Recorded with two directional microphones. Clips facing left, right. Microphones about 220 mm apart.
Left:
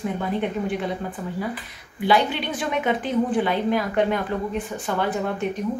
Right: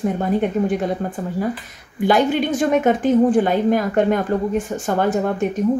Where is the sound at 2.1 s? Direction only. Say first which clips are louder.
Right 5 dB; 45° right (ahead or behind).